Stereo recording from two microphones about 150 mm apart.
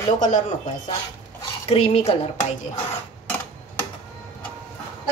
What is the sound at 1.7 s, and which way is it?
Speech, 45° left (ahead or behind).